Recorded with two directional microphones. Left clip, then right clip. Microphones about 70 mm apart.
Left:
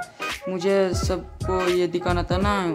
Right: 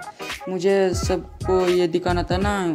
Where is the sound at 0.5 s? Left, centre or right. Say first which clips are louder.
Right 2 dB; right.